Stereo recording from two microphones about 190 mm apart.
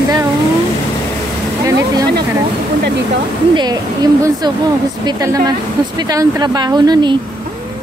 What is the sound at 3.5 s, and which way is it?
A woman's voice, 20° right (ahead or behind).